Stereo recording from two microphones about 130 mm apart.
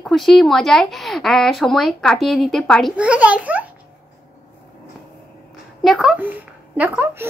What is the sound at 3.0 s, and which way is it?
Speech, 10° right (ahead or behind).